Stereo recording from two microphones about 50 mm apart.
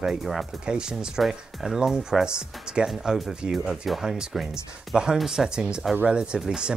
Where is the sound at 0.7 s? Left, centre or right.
Centre.